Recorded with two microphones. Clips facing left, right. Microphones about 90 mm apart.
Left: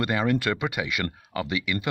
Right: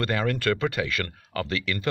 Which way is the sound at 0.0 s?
20° left (ahead or behind).